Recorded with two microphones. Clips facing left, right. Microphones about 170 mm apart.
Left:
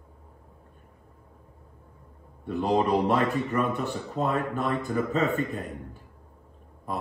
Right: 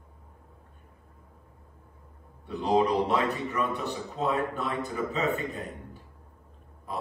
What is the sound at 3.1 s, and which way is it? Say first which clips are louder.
Speech: left 3 dB; 45° left (ahead or behind).